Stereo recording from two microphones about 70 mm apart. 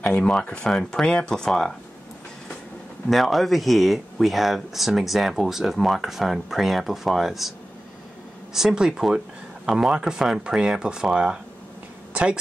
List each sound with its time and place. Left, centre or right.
0.0 s speech: centre
3.1 s speech: centre
8.5 s speech: centre
12.1 s a sound: centre